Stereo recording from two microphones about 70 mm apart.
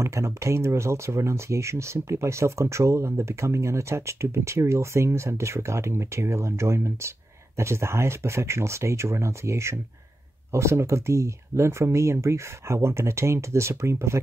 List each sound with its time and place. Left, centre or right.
0.0 s speech: right